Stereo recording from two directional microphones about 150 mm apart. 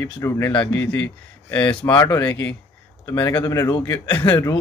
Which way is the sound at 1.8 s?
20° left (ahead or behind).